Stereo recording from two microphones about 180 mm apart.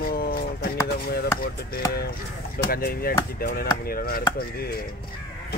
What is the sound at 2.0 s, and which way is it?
Speech, 55° left (ahead or behind).